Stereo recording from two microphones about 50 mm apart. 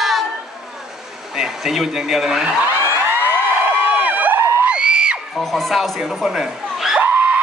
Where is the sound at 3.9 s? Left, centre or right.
Right.